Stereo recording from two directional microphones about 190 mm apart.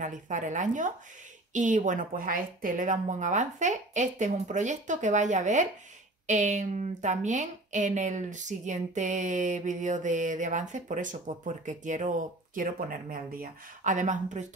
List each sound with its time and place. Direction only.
0.0 s a woman's voice: 40° right (ahead or behind)